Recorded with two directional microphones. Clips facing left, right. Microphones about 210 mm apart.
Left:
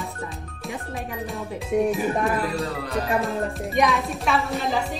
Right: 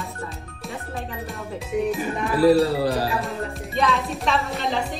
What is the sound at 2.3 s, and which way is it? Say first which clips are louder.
Speech: right 9 dB; 35° right (ahead or behind).